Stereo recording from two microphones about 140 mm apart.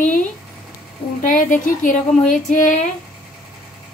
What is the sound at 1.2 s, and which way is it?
A woman's voice, 75° left (ahead or behind).